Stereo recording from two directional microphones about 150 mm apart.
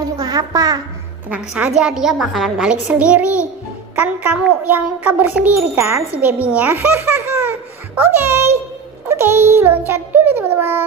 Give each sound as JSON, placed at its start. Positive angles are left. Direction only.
{"t": 0.2, "sound": "a woman's voice", "side_deg": -25}
{"t": 1.3, "sound": "a woman's voice", "side_deg": -5}
{"t": 9.1, "sound": "a sound", "side_deg": -15}